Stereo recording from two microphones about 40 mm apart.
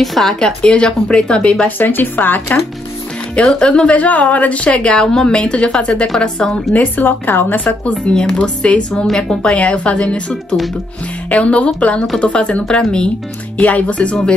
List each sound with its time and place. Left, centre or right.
0.0 s speech: centre
0.6 s a woman's voice: left
1.8 s a woman's voice: left
3.4 s a woman's voice: centre
3.9 s a woman's voice: left; by 6.6 s centre
6.7 s a woman's voice: left
7.1 s a woman's voice: left
8.1 s a woman's voice: centre
9.6 s a woman's voice: left
11.2 s a woman's voice: left
13.7 s speech: left